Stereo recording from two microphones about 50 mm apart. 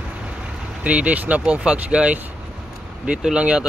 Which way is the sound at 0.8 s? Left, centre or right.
Right.